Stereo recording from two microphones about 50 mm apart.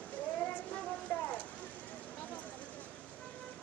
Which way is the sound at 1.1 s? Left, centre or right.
Left.